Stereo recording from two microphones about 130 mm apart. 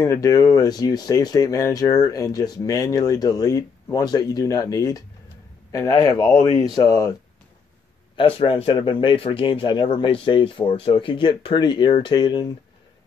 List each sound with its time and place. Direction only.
0.0 s speech: 25° left (ahead or behind)
8.2 s speech: 45° left (ahead or behind)